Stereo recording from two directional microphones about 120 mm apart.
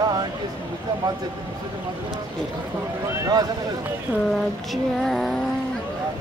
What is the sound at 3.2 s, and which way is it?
Speech, 35° right (ahead or behind).